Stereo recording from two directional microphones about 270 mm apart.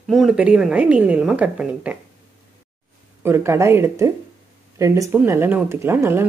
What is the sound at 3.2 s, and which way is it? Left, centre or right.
Speech, centre.